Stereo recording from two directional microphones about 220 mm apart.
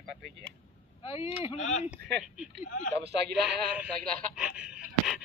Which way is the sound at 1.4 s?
30° left (ahead or behind).